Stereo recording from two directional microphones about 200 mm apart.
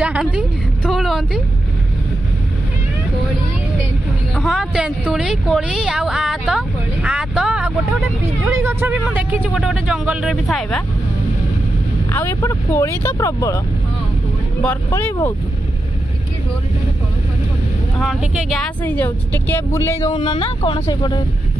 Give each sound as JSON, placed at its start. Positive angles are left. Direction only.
{"t": 0.0, "sound": "a woman's voice", "side_deg": -5}
{"t": 0.8, "sound": "vehicle", "side_deg": 0}
{"t": 4.4, "sound": "speech", "side_deg": 0}
{"t": 12.1, "sound": "speech", "side_deg": 15}
{"t": 14.6, "sound": "speech", "side_deg": 10}
{"t": 17.9, "sound": "speech", "side_deg": 0}
{"t": 20.2, "sound": "speech", "side_deg": 25}